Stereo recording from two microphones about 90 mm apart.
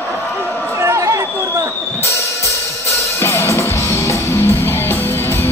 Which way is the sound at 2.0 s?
35° left (ahead or behind).